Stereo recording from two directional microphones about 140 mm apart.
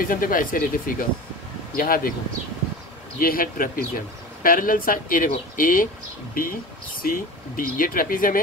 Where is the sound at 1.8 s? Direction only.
90° left.